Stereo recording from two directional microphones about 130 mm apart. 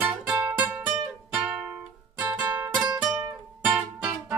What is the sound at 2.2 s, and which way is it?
Music, 10° right (ahead or behind).